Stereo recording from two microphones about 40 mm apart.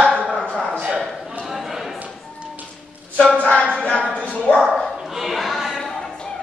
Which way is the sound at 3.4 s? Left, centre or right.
Left.